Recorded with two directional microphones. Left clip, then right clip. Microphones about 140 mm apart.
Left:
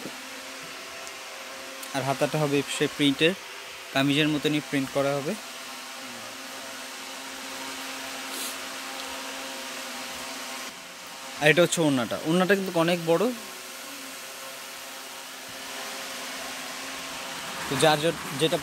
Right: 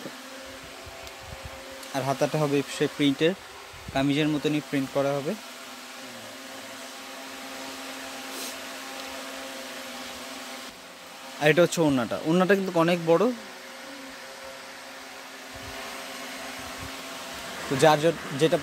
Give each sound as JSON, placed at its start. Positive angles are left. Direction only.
{"t": 2.0, "sound": "speech", "side_deg": -10}
{"t": 3.9, "sound": "speech", "side_deg": 0}
{"t": 11.4, "sound": "speech", "side_deg": -5}
{"t": 17.7, "sound": "speech", "side_deg": -30}